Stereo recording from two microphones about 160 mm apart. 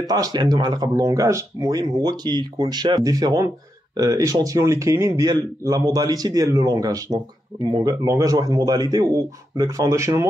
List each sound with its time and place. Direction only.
0.1 s speech: 25° right (ahead or behind)